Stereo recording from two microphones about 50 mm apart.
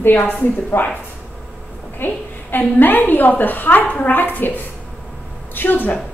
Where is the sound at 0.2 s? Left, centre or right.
Left.